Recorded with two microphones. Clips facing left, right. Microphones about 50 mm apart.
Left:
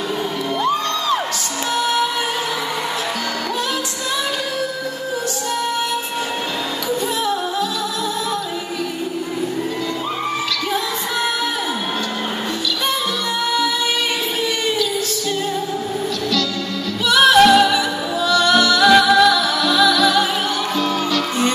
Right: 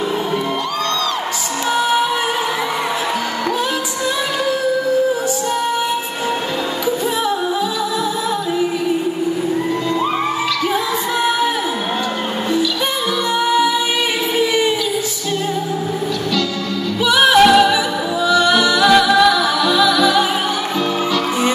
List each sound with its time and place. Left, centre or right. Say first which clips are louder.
1.8 s music: right 2 dB; centre
17.1 s music: even; centre